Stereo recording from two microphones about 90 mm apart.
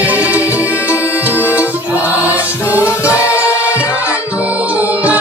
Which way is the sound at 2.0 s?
20° right (ahead or behind).